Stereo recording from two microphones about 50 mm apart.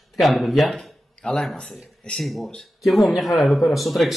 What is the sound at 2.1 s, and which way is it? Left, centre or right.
Speech, centre.